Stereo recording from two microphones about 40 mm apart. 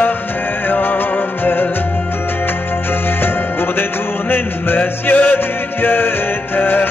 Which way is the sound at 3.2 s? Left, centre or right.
Left.